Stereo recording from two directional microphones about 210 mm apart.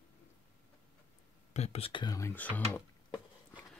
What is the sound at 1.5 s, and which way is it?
Speech, 30° left (ahead or behind).